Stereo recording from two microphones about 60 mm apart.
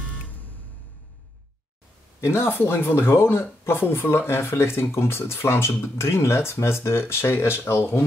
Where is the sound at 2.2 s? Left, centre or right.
Left.